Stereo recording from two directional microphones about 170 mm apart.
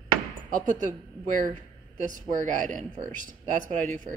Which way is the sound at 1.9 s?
50° right (ahead or behind).